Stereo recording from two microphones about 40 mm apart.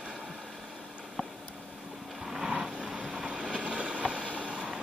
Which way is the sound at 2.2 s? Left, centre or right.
Centre.